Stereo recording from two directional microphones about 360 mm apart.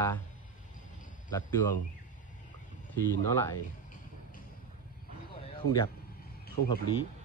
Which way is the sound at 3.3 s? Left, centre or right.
Centre.